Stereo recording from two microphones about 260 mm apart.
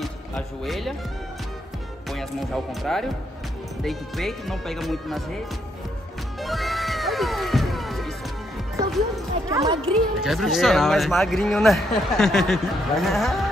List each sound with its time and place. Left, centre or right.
0.0 s speech: centre
2.0 s speech: centre
6.4 s music: centre
9.5 s speech: centre
9.9 s speech: centre